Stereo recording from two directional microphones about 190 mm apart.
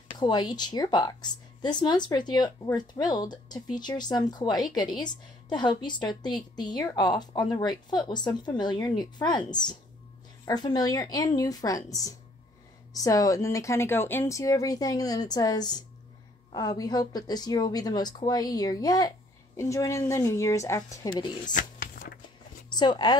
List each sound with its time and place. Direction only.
0.2 s speech: 25° left (ahead or behind)
10.4 s speech: 20° left (ahead or behind)
21.5 s a sound: 45° left (ahead or behind)
22.7 s speech: 20° left (ahead or behind)